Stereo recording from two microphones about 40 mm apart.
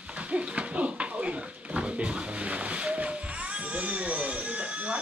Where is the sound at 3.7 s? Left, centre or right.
Right.